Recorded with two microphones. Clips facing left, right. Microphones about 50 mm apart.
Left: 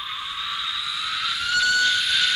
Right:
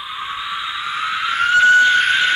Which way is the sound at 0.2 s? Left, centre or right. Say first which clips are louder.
Right 8 dB; right.